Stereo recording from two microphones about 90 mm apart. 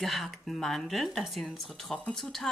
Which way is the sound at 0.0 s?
Centre (ahead or behind).